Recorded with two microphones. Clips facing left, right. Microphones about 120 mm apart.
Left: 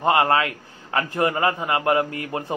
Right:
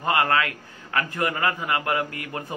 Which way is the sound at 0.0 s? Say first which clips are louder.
Left 4 dB; 30° left (ahead or behind).